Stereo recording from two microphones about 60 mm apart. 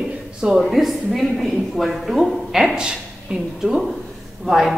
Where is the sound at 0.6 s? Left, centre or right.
Centre.